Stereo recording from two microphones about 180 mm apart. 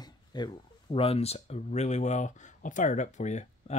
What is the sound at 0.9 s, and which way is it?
Speech, 35° left (ahead or behind).